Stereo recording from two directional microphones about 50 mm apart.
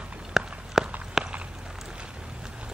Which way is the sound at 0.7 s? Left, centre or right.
Centre.